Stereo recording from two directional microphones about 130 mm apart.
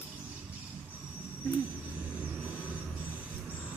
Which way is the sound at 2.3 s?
15° right (ahead or behind).